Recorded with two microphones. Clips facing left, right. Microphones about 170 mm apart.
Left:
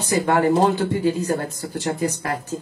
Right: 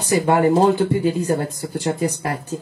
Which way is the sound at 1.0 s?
15° right (ahead or behind).